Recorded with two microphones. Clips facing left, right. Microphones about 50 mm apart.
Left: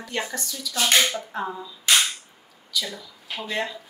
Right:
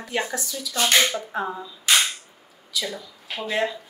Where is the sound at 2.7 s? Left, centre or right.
Centre.